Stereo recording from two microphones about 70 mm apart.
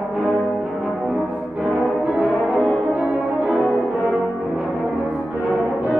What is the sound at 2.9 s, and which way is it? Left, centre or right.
French horn, right.